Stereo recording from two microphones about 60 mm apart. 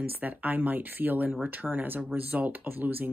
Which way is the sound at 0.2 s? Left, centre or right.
Right.